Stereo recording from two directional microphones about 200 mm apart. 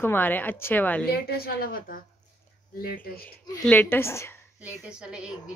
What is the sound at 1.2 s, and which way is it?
A woman's voice, 50° left (ahead or behind).